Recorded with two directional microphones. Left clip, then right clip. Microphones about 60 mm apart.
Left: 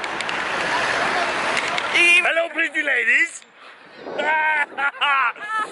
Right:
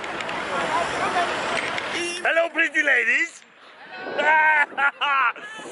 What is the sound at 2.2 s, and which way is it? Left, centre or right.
Speech, centre.